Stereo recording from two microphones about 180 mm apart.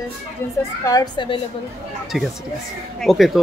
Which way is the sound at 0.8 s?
25° left (ahead or behind).